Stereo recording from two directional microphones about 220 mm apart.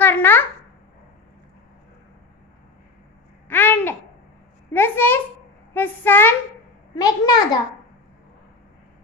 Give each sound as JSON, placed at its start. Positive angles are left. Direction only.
{"t": 0.0, "sound": "babbling", "side_deg": 10}
{"t": 3.4, "sound": "babbling", "side_deg": 10}
{"t": 4.7, "sound": "a sound", "side_deg": 10}